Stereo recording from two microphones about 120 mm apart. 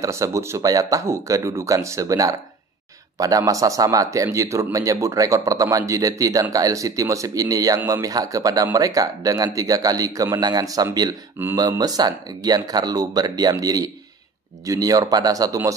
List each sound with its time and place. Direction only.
0.0 s speech: 25° right (ahead or behind)